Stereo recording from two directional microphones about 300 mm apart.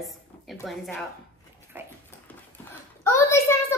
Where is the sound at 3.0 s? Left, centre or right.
Centre.